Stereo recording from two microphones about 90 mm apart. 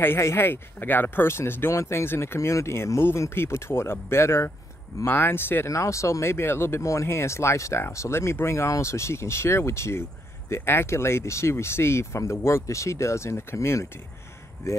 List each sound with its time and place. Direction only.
0.0 s speech: 25° left (ahead or behind)